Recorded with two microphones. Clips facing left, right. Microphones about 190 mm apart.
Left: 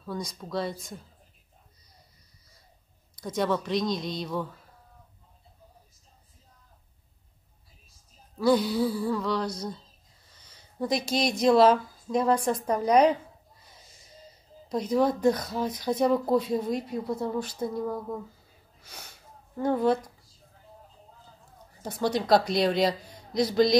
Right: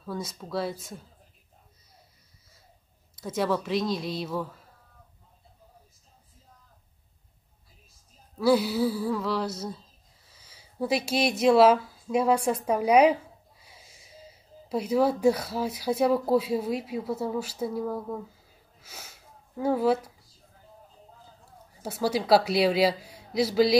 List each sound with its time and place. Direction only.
0.0 s speech: 5° right (ahead or behind)
3.2 s speech: 5° right (ahead or behind)
8.4 s speech: 5° right (ahead or behind)
18.8 s sniff: 5° right (ahead or behind)
21.8 s a woman's voice: 5° right (ahead or behind)